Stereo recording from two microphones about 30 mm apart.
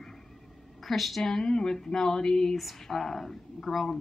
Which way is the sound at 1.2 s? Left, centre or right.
Centre.